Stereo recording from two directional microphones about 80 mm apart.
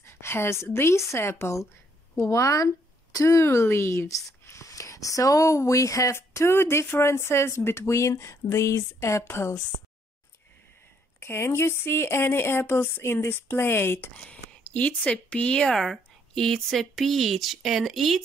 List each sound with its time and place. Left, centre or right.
0.0 s a woman's voice: left
11.1 s speech: left
14.1 s speech: centre